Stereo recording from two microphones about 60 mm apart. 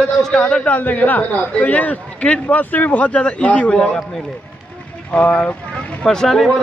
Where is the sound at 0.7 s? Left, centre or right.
Left.